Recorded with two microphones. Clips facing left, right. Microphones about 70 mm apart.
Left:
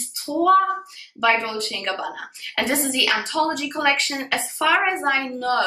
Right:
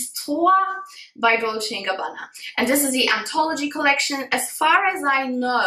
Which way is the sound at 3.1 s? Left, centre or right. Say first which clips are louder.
Right 1 dB; right.